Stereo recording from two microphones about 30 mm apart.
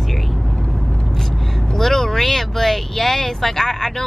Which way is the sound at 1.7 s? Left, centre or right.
Centre.